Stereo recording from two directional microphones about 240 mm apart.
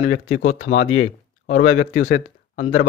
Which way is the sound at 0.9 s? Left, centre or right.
Left.